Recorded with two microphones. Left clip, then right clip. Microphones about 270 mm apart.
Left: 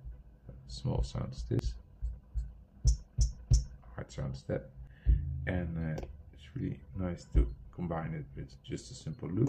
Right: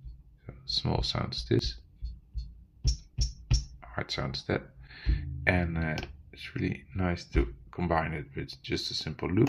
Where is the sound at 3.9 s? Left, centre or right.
Centre.